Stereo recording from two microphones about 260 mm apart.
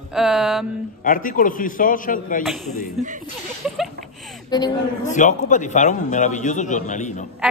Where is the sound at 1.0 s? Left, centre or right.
Left.